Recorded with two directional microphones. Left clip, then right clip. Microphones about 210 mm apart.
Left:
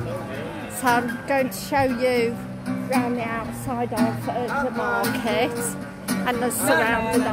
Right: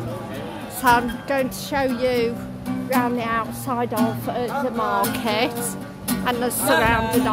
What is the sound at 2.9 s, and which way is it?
Music, 15° right (ahead or behind).